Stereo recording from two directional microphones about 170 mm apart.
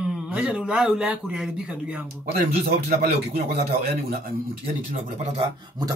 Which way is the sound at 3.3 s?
65° right (ahead or behind).